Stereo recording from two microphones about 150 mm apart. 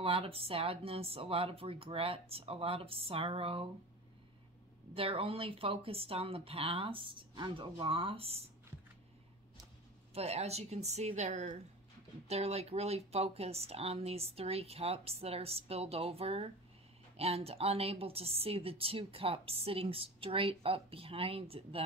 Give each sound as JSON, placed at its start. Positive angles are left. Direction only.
{"t": 0.0, "sound": "a woman's voice", "side_deg": -40}
{"t": 4.9, "sound": "a woman's voice", "side_deg": -40}
{"t": 10.1, "sound": "a woman's voice", "side_deg": -45}